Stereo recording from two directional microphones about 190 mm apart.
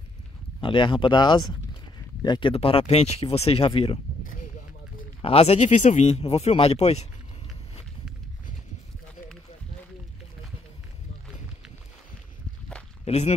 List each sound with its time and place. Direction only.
0.6 s speech: 25° left (ahead or behind)
5.2 s speech: 30° left (ahead or behind)
13.0 s speech: 35° left (ahead or behind)